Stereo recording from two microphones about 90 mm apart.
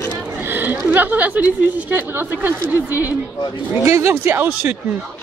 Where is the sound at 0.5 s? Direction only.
20° right (ahead or behind).